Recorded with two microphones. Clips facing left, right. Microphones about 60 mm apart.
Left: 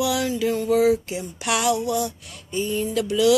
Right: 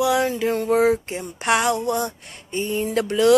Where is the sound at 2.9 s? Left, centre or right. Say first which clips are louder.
Right 2 dB; right.